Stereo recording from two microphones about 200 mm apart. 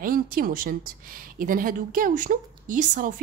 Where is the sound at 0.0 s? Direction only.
45° right (ahead or behind).